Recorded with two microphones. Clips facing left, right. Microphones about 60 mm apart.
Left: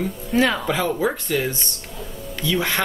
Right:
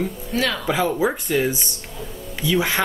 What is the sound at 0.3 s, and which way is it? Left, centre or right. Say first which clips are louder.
Speech: left 5 dB; centre.